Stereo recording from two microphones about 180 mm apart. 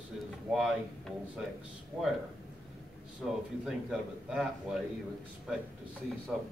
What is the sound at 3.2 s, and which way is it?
A man's voice, centre (ahead or behind).